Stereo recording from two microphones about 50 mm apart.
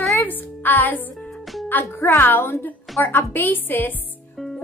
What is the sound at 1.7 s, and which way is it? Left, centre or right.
A woman's voice, left.